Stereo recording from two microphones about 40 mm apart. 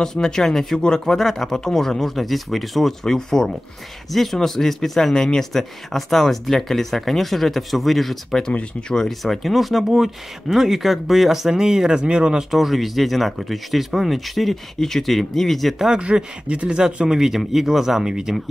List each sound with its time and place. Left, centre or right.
0.0 s speech: centre
8.8 s speech: centre
9.2 s speech: centre
12.0 s speech: right
12.4 s speech: centre
15.9 s speech: right